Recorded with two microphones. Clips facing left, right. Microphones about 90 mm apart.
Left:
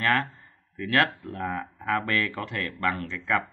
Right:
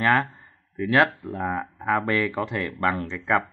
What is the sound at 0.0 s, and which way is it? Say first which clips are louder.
Speech: right 4 dB; 20° right (ahead or behind).